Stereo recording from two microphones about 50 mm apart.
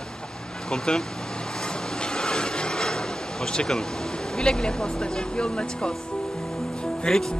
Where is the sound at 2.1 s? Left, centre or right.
Centre.